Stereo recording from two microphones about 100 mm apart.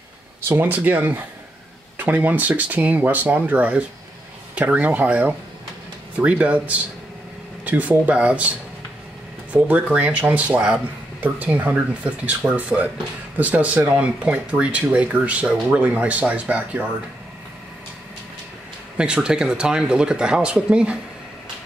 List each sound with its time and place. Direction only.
0.5 s speech: 20° right (ahead or behind)
9.5 s speech: 15° right (ahead or behind)
18.9 s speech: 10° right (ahead or behind)